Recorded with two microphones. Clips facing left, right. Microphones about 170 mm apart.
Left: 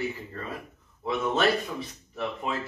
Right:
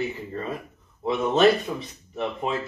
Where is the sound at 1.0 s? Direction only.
20° right (ahead or behind).